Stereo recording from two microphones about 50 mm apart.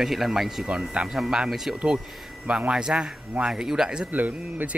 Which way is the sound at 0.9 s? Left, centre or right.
Centre.